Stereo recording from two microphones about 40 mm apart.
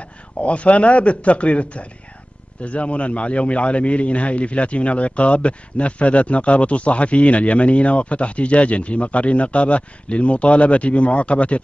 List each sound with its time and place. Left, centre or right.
0.4 s a man's voice: left